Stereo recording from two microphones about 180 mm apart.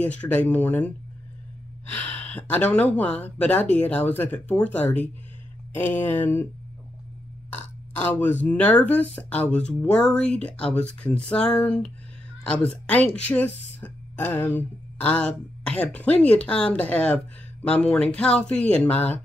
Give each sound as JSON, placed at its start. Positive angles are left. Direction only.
{"t": 0.0, "sound": "speech", "side_deg": 10}
{"t": 2.0, "sound": "speech", "side_deg": 10}
{"t": 7.5, "sound": "speech", "side_deg": 10}